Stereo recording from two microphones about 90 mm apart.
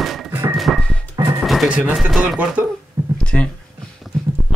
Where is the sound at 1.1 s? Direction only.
40° right (ahead or behind).